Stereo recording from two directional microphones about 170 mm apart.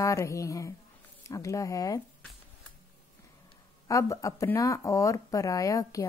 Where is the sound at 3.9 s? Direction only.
20° left (ahead or behind).